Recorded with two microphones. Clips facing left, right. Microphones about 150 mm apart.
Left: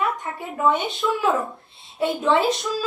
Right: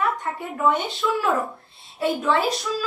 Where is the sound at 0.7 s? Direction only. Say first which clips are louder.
Left 1 dB; 20° left (ahead or behind).